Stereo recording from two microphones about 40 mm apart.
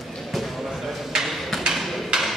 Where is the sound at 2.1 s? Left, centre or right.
Centre.